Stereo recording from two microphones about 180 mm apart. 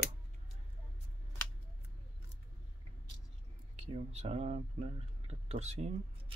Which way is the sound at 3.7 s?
35° right (ahead or behind).